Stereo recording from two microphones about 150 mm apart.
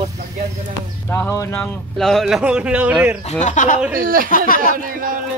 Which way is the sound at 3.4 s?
55° left (ahead or behind).